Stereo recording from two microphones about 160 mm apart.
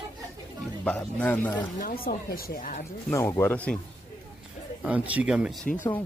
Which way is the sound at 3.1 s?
15° left (ahead or behind).